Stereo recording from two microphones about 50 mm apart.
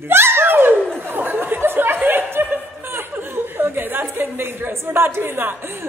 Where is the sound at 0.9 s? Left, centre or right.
Right.